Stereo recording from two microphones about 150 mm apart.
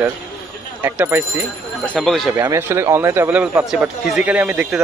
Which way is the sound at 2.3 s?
15° right (ahead or behind).